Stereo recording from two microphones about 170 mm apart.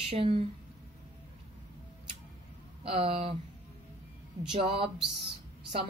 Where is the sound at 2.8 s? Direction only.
35° right (ahead or behind).